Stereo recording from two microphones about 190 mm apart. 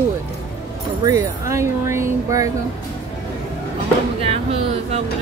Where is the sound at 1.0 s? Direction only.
15° right (ahead or behind).